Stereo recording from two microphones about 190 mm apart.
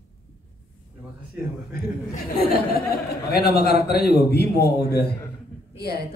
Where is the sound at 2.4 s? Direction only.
55° left (ahead or behind).